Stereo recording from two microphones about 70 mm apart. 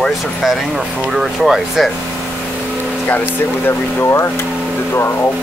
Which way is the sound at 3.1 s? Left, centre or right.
Left.